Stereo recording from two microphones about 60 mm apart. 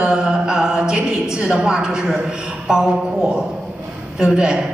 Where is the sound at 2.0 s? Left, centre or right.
Centre.